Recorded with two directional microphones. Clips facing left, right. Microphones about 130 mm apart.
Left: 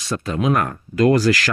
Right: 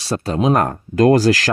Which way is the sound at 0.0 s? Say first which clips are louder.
Right 3 dB; 35° right (ahead or behind).